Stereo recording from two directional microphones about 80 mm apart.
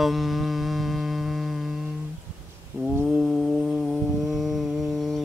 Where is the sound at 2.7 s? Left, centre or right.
Right.